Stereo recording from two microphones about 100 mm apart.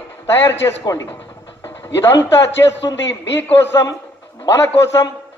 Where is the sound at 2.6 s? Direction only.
40° left (ahead or behind).